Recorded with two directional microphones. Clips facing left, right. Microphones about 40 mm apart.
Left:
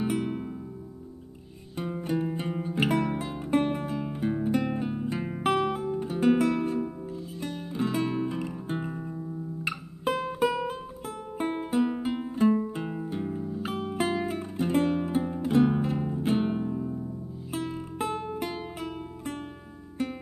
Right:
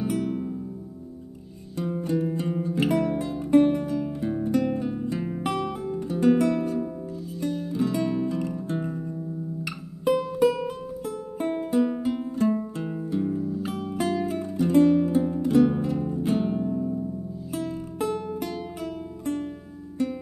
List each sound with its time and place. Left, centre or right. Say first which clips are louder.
0.1 s music: right 3 dB; left
1.8 s guitar: right 3 dB; centre
3.5 s music: right 7 dB; centre
3.8 s music: right 3 dB; left
6.2 s guitar: right 3 dB; centre
7.4 s music: right 5 dB; left
9.7 s guitar: right 5 dB; centre
10.4 s music: right 2 dB; centre
11.3 s music: right 3 dB; left